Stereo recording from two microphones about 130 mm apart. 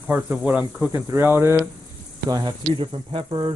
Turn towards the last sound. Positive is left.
turn(degrees=-40)  # may be behind; listen again after turning